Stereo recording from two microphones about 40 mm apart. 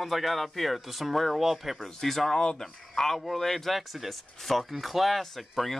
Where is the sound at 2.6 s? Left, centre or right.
Centre.